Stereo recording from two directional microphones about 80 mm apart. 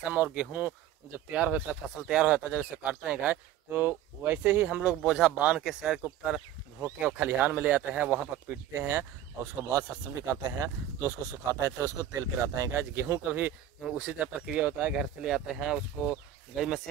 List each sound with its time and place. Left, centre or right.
0.0 s speech: centre
5.0 s speech: centre
7.0 s speech: right
8.7 s speech: right
12.7 s speech: right
13.8 s speech: centre